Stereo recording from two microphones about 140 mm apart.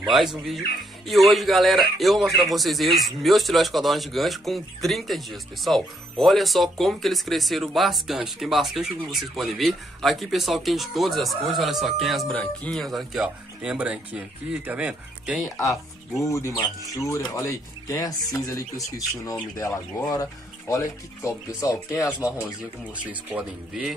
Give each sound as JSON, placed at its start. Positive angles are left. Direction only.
{"t": 0.1, "sound": "speech", "side_deg": 0}
{"t": 15.4, "sound": "speech", "side_deg": 20}
{"t": 20.0, "sound": "speech", "side_deg": 25}
{"t": 21.9, "sound": "speech", "side_deg": -5}